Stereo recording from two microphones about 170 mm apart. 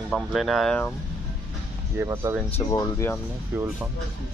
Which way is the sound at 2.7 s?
20° left (ahead or behind).